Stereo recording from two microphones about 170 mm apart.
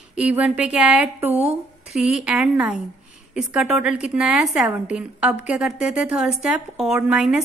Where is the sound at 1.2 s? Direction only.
40° right (ahead or behind).